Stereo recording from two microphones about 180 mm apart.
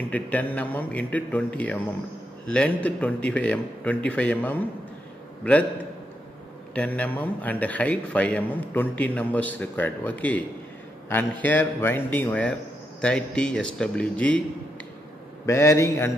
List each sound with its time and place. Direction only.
0.1 s a man's voice: 10° left (ahead or behind)
6.7 s a man's voice: 10° left (ahead or behind)
15.4 s a man's voice: 15° left (ahead or behind)